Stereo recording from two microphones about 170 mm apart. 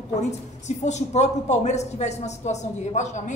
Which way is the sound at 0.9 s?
45° left (ahead or behind).